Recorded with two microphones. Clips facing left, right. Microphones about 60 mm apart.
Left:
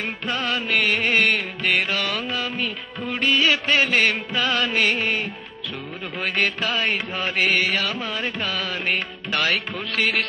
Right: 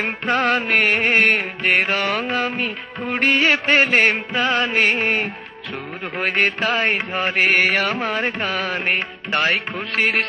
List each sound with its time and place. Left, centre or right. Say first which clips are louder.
0.0 s music: right 7 dB; right